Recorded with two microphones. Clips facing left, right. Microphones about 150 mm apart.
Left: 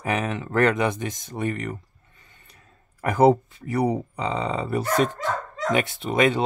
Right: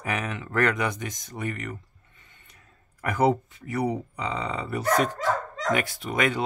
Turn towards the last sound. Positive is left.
turn(degrees=25)  # may be behind; listen again after turning